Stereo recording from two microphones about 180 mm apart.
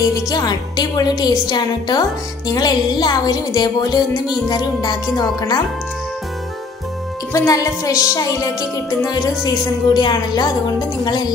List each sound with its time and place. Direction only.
0.1 s speech: 20° left (ahead or behind)
7.3 s a woman's voice: 15° left (ahead or behind)